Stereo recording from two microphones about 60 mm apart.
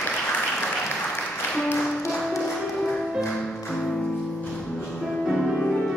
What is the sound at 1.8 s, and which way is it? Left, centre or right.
Music, centre.